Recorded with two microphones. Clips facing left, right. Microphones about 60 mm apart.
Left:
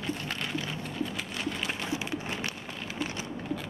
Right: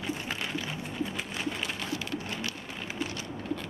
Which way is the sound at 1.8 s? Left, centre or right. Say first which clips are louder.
Left 1 dB; left.